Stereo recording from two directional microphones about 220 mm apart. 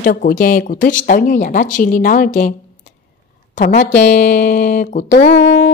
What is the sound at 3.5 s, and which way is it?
Speech, 35° left (ahead or behind).